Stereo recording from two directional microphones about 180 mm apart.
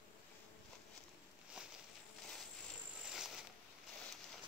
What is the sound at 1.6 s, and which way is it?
Walk, 5° right (ahead or behind).